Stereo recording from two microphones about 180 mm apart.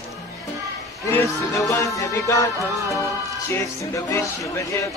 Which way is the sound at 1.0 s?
20° left (ahead or behind).